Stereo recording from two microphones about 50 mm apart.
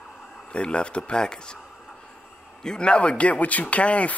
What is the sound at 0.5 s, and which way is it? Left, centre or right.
Speech, left.